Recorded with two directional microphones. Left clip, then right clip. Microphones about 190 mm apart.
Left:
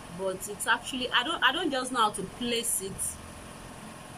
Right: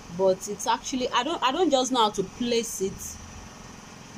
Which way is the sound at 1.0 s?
25° right (ahead or behind).